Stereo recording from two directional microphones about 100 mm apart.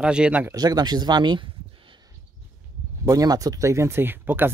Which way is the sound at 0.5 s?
40° right (ahead or behind).